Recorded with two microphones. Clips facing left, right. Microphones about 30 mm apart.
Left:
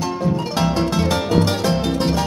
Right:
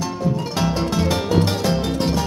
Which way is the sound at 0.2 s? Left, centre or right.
Centre.